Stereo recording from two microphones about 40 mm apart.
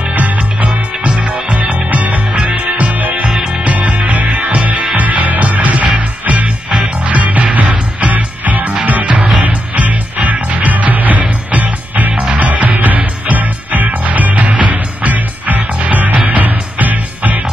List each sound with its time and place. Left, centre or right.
0.1 s music: right
9.0 s music: right